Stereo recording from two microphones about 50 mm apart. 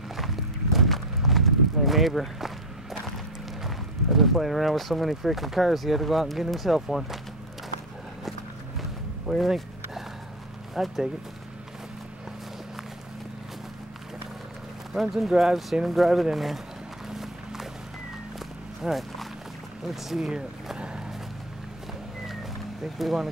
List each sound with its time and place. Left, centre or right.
0.7 s clip-clop: centre
3.6 s speech: centre
9.3 s a sound: centre
10.7 s speech: centre
15.0 s speech: centre
17.1 s music: centre
18.9 s speech: centre
20.7 s a sound: centre
22.9 s speech: centre